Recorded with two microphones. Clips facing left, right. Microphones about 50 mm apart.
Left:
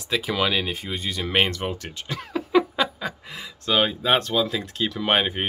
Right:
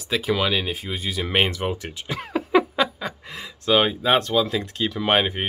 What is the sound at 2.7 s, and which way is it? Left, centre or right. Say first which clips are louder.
Speech: right 2 dB; centre.